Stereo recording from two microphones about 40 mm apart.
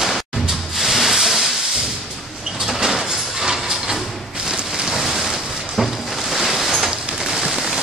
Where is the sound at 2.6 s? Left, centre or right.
Centre.